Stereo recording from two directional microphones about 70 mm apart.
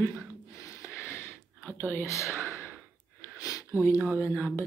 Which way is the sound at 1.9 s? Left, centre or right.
Left.